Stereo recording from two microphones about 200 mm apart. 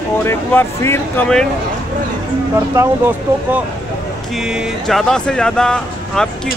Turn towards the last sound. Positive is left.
turn(degrees=5)  # may be behind; listen again after turning